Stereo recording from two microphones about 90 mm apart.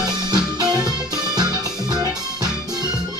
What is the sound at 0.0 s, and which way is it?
Music, 45° right (ahead or behind).